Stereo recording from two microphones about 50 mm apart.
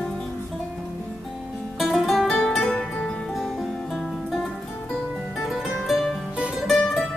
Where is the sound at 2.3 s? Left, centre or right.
Centre.